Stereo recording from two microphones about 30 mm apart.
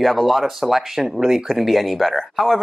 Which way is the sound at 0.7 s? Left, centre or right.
Centre.